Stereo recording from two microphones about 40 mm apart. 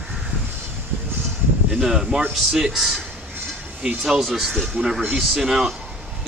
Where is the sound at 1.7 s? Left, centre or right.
Centre.